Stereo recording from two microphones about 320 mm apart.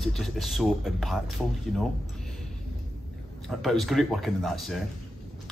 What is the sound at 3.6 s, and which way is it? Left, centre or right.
Speech, centre.